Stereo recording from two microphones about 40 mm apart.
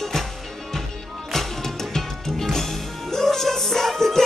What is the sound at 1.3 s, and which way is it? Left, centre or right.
Music, centre.